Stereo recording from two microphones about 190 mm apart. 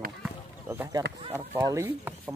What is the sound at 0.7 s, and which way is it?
Speech, 15° right (ahead or behind).